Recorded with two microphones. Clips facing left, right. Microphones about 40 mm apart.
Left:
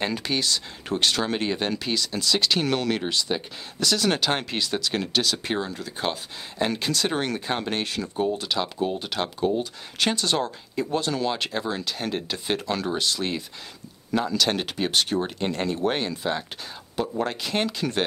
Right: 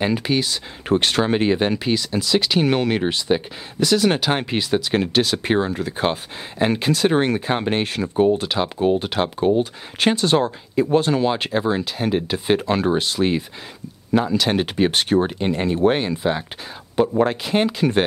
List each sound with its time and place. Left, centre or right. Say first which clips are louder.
0.0 s speech: right 6 dB; centre
0.8 s speech: right 6 dB; right
15.3 s speech: right 5 dB; centre
16.9 s speech: right 9 dB; right
17.2 s speech: right 7 dB; centre